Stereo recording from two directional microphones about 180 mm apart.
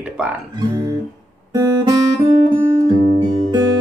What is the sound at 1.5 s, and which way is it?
Guitar, 20° right (ahead or behind).